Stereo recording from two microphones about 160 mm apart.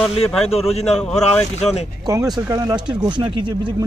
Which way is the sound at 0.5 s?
40° left (ahead or behind).